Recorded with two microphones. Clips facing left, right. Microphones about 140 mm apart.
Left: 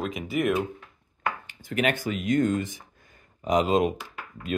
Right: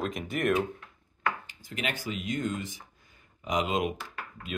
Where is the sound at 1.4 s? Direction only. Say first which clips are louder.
Left 9 dB; 60° left (ahead or behind).